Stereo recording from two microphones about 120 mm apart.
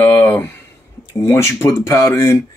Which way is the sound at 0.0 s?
20° left (ahead or behind).